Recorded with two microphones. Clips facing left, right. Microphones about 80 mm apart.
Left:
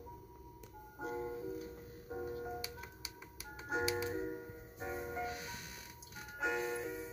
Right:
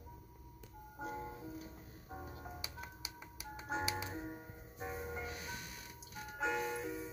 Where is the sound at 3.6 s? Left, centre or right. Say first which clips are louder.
Left 3 dB; centre.